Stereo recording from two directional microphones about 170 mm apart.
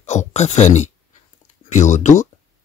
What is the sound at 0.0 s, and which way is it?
Speech, 40° left (ahead or behind).